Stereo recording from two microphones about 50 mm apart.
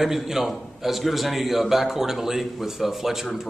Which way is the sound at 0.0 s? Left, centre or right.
Centre.